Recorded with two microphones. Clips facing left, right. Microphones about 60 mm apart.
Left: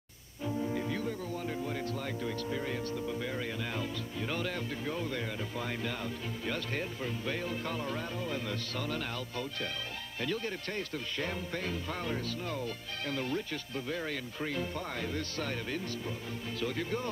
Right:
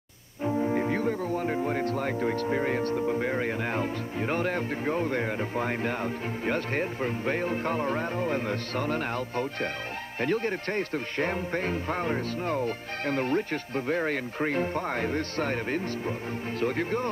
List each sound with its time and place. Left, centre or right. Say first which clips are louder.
0.4 s speech: right 8 dB; right